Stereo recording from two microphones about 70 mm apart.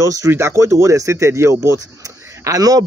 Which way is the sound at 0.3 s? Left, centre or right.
Right.